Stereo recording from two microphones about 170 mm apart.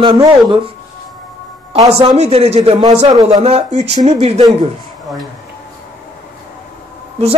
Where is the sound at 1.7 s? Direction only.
40° right (ahead or behind).